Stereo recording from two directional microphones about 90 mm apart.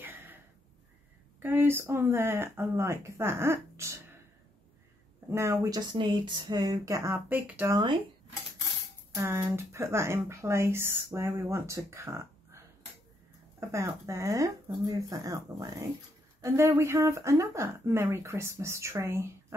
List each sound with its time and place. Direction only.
0.0 s a sound: 20° right (ahead or behind)
1.4 s speech: 25° right (ahead or behind)
5.3 s speech: 35° right (ahead or behind)
5.9 s speech: 60° right (ahead or behind); by 7.2 s 35° right (ahead or behind)
7.2 s speech: 20° right (ahead or behind)
9.1 s speech: 30° right (ahead or behind)